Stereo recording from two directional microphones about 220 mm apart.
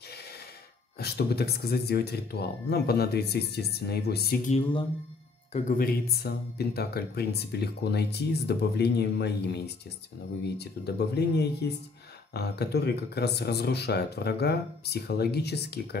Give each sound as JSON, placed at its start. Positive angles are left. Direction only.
{"t": 0.9, "sound": "speech", "side_deg": 45}
{"t": 4.5, "sound": "speech", "side_deg": 25}
{"t": 5.5, "sound": "speech", "side_deg": 40}